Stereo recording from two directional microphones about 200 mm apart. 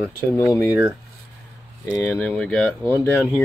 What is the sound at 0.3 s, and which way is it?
Speech, 15° left (ahead or behind).